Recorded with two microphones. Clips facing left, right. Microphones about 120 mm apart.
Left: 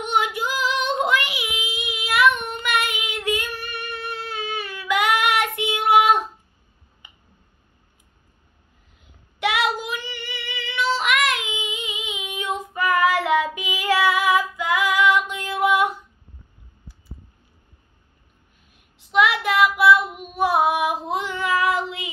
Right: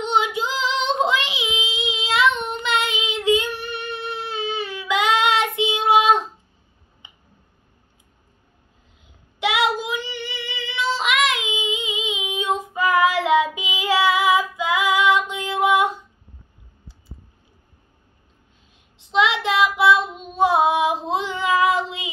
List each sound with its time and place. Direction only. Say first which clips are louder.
0.0 s female singing: right 2 dB; 20° right (ahead or behind)
1.0 s child singing: even; 20° right (ahead or behind)
7.0 s tick: right 1 dB; 25° right (ahead or behind)
9.4 s child singing: right 2 dB; 15° right (ahead or behind)
19.0 s child singing: even; 20° right (ahead or behind)